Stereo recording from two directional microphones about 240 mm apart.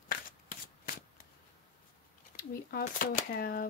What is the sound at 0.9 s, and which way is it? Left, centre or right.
Shuffling cards, left.